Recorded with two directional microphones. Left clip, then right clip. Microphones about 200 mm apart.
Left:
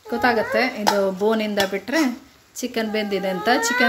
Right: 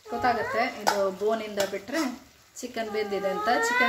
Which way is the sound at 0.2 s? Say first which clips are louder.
Left 6 dB; 55° left (ahead or behind).